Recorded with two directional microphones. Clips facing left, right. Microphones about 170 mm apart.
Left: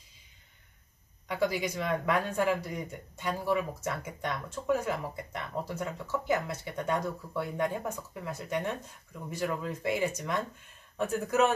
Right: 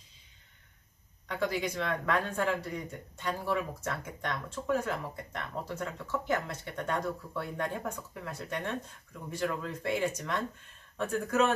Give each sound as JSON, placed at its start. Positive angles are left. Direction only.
{"t": 1.2, "sound": "speech", "side_deg": 10}